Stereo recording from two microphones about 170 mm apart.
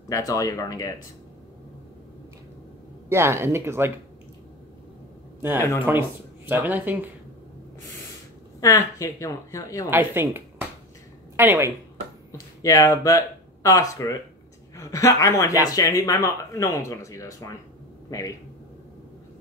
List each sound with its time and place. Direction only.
0.1 s speech: 20° left (ahead or behind)
3.1 s speech: 15° right (ahead or behind)
5.9 s speech: 15° right (ahead or behind)
8.5 s speech: 20° left (ahead or behind)
9.8 s speech: 15° right (ahead or behind)
12.3 s a woman's voice: 20° left (ahead or behind)